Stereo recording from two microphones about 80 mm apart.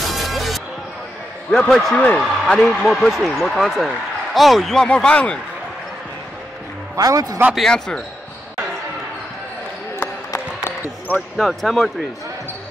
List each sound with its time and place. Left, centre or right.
0.0 s music: centre
1.5 s speech: centre
2.0 s speech: centre
2.4 s speech: centre
4.8 s speech: centre
7.0 s a man's voice: right
7.5 s speech: centre
10.3 s a sound: left
11.1 s speech: centre